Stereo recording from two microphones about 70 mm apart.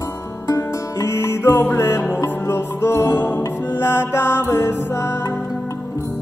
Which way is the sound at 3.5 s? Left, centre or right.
Left.